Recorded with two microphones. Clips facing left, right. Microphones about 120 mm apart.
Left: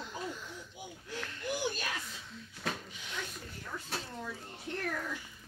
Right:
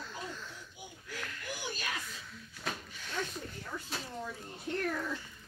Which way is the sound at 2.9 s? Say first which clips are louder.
Right 3 dB; 15° left (ahead or behind).